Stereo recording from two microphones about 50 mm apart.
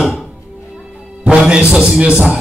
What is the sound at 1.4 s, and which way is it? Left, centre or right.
Speech, centre.